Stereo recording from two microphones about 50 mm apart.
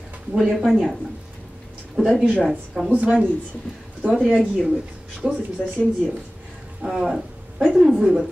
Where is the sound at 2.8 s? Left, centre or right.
Right.